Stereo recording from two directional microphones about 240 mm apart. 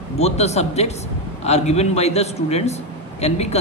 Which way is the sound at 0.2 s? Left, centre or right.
Left.